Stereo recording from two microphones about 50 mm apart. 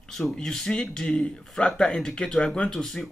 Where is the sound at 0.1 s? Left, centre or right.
Centre.